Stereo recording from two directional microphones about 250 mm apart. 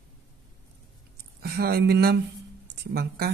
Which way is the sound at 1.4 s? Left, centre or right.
Right.